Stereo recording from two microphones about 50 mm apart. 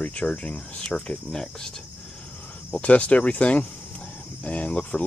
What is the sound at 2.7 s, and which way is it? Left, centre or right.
Speech, left.